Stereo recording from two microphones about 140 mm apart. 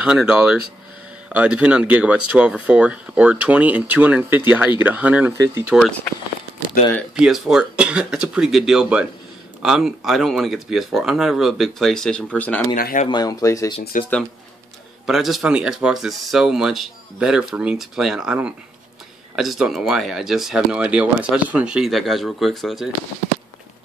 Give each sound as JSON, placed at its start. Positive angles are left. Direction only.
{"t": 0.0, "sound": "speech", "side_deg": -5}
{"t": 7.2, "sound": "speech", "side_deg": -5}
{"t": 12.7, "sound": "speech", "side_deg": 90}
{"t": 13.1, "sound": "speech", "side_deg": 25}
{"t": 15.0, "sound": "speech", "side_deg": 0}